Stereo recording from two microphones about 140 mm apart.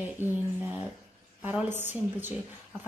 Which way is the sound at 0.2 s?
15° right (ahead or behind).